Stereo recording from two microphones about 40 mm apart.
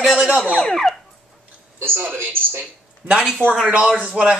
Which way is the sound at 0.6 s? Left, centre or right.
Centre.